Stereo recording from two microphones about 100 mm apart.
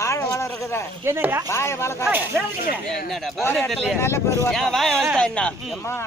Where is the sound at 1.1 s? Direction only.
25° right (ahead or behind).